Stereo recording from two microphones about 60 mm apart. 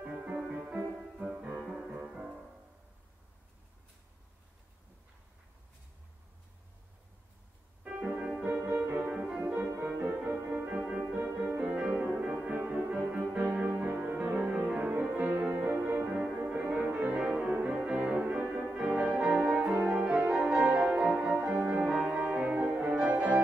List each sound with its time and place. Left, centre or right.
0.0 s music: right
7.8 s music: right
13.4 s music: right
17.2 s brass instrument: centre
18.9 s music: right